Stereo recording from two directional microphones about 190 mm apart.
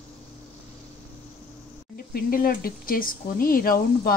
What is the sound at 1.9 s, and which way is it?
Speech, 50° left (ahead or behind).